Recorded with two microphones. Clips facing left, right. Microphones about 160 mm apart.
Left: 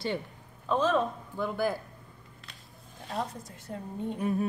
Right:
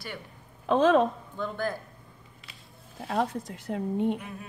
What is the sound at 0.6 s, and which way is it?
Speech, 65° right (ahead or behind).